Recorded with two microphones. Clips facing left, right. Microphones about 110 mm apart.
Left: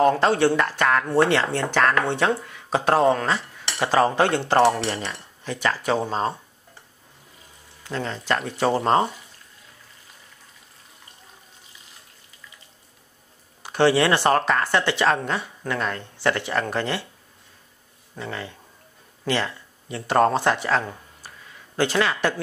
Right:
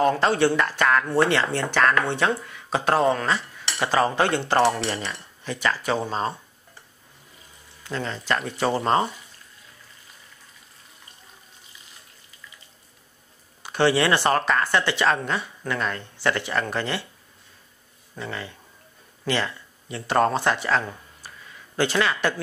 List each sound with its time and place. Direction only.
0.0 s speech: 40° left (ahead or behind)
7.8 s speech: 40° left (ahead or behind)
13.6 s speech: 40° left (ahead or behind)
18.1 s speech: 40° left (ahead or behind)
19.2 s a sound: 40° left (ahead or behind)
20.1 s speech: 35° left (ahead or behind)
20.9 s a sound: 35° left (ahead or behind)